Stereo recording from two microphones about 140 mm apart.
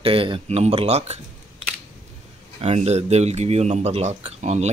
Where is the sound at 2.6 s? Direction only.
50° right (ahead or behind).